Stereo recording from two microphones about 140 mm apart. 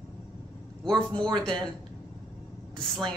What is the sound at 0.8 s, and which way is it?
Speech, 5° left (ahead or behind).